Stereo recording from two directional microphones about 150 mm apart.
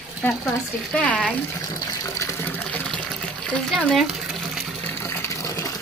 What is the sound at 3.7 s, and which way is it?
Speech, centre (ahead or behind).